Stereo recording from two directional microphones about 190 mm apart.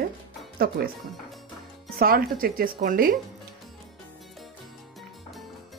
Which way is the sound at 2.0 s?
50° right (ahead or behind).